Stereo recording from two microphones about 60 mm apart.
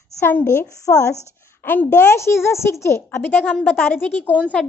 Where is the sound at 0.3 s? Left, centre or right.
Left.